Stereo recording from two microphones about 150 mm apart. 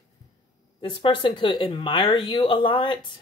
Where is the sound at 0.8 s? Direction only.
30° left (ahead or behind).